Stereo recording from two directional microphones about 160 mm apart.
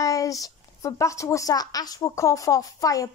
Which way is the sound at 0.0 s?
20° left (ahead or behind).